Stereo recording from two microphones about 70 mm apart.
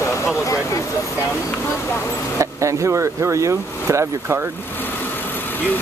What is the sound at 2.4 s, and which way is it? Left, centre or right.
Speech, right.